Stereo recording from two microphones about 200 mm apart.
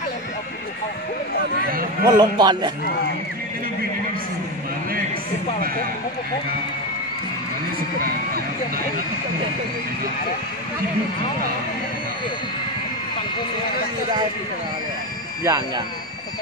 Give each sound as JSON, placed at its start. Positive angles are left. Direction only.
{"t": 2.0, "sound": "a man's voice", "side_deg": -20}
{"t": 15.4, "sound": "a man's voice", "side_deg": -20}